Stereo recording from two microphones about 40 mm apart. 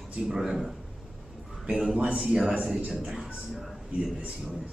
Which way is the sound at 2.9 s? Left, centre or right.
Centre.